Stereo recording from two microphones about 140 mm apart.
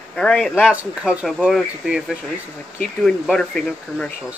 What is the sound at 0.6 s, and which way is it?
Speech, 5° right (ahead or behind).